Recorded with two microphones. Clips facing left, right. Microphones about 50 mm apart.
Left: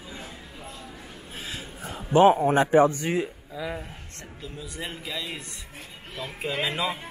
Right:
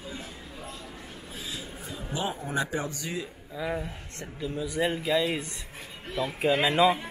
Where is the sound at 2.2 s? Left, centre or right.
Left.